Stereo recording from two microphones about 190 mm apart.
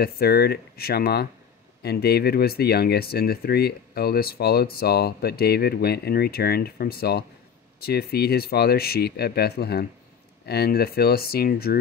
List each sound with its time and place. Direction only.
0.0 s speech: 55° left (ahead or behind)